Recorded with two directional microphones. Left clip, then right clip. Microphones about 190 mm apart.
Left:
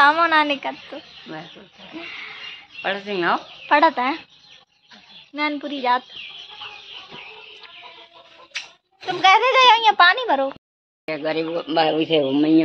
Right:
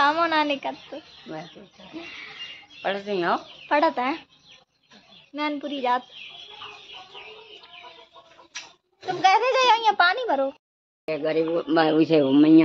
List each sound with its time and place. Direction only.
0.0 s a child's voice: 5° left (ahead or behind)
2.8 s speech: centre (ahead or behind)
3.6 s a child's voice: 10° left (ahead or behind)
5.3 s a child's voice: 10° left (ahead or behind)
9.0 s a child's voice: 10° left (ahead or behind)
11.1 s a man's voice: 20° right (ahead or behind)
11.6 s a man's voice: 50° right (ahead or behind); by 12.6 s 30° right (ahead or behind)